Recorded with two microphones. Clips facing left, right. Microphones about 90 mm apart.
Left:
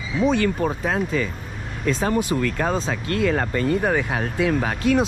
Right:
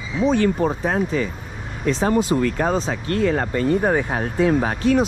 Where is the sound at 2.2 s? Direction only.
30° right (ahead or behind).